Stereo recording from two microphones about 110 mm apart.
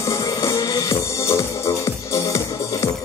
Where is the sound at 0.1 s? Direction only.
30° left (ahead or behind).